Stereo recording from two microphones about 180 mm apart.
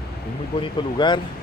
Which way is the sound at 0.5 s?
25° left (ahead or behind).